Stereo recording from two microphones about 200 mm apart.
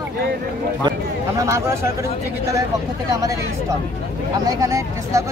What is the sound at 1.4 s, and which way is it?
Speech, 15° right (ahead or behind).